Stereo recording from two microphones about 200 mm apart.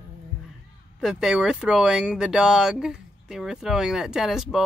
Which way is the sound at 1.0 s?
5° right (ahead or behind).